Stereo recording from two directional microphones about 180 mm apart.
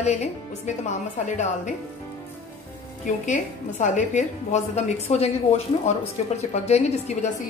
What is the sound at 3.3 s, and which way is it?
A woman's voice, 40° left (ahead or behind).